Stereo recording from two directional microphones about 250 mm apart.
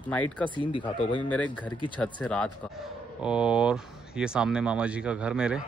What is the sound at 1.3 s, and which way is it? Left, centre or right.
Speech, centre.